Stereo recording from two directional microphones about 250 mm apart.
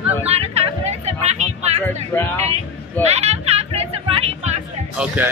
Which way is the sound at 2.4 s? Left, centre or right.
Right.